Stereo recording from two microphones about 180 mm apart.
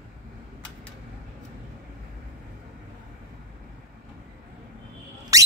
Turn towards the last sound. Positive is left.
turn(degrees=-20)  # may be behind; listen again after turning